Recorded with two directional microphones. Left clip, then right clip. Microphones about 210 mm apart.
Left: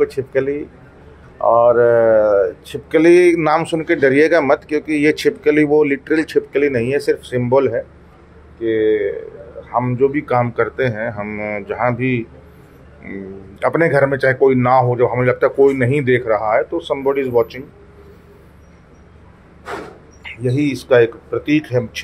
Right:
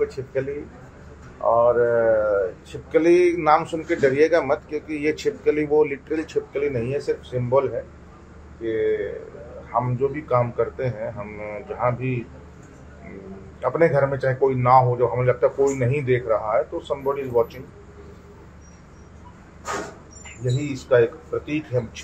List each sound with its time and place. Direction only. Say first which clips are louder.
0.0 s speech: left 8 dB; 45° left (ahead or behind)
9.7 s speech: left 7 dB; 55° left (ahead or behind)
13.6 s speech: left 5 dB; 55° left (ahead or behind)
20.5 s speech: left 6 dB; 50° left (ahead or behind)